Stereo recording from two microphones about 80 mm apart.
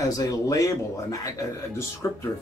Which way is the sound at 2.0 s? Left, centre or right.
Left.